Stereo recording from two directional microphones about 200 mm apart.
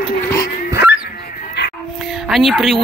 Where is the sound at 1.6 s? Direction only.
60° left (ahead or behind).